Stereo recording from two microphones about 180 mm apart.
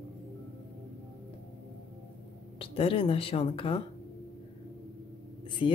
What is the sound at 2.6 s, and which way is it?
Speech, 30° left (ahead or behind).